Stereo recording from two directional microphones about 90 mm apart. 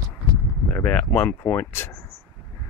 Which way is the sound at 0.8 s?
15° left (ahead or behind).